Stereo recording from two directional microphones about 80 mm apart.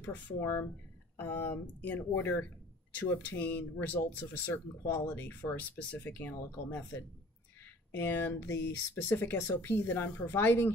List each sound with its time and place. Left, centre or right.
0.0 s speech: left